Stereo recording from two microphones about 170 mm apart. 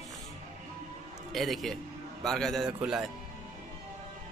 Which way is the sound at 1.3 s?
Centre (ahead or behind).